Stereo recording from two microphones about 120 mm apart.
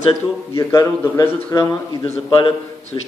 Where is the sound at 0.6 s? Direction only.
25° left (ahead or behind).